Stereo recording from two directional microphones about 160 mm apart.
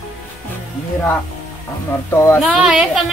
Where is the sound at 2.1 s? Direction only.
15° left (ahead or behind).